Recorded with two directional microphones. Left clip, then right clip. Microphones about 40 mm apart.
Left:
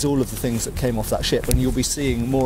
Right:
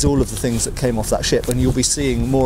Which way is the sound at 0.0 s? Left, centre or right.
Right.